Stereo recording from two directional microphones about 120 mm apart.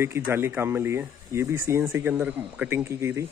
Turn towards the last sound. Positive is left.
turn(degrees=-20)  # may be behind; listen again after turning